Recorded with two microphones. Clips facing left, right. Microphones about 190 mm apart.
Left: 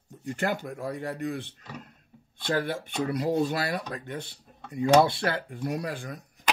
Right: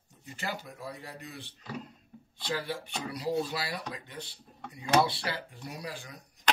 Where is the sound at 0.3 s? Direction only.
55° left (ahead or behind).